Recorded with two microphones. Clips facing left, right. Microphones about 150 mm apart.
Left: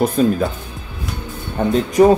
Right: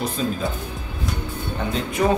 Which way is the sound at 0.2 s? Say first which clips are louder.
Left 10 dB; 55° left (ahead or behind).